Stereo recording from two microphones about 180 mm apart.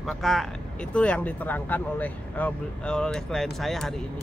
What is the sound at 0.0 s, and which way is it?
Speech, centre (ahead or behind).